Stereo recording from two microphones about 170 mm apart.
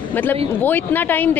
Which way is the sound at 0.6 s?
10° left (ahead or behind).